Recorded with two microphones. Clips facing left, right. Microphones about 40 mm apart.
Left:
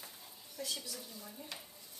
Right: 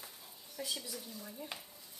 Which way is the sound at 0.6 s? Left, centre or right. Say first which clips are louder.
Right 1 dB; centre.